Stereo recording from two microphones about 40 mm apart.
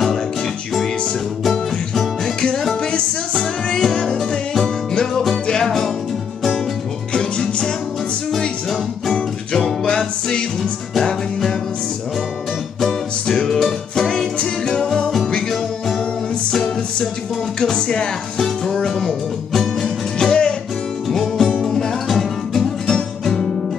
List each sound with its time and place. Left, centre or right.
1.4 s music: centre
2.8 s music: left
3.7 s music: centre
5.3 s music: centre
7.3 s music: left
9.8 s music: centre
13.3 s music: centre
16.5 s music: centre
18.7 s music: centre
19.5 s music: centre
20.2 s music: left
21.1 s music: centre